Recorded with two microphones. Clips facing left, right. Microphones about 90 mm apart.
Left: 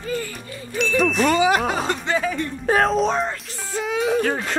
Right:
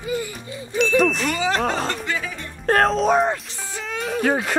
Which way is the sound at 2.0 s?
35° left (ahead or behind).